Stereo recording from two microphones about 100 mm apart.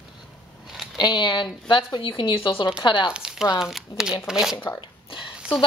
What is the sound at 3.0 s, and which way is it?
Speech, 10° right (ahead or behind).